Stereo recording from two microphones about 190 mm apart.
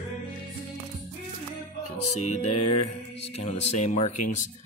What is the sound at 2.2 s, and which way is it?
Speech, 35° left (ahead or behind).